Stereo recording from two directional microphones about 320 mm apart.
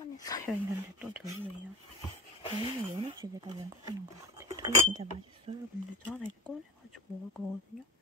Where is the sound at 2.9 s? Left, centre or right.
Centre.